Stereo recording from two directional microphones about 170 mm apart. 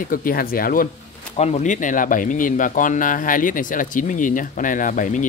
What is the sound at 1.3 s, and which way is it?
Speech, 40° left (ahead or behind).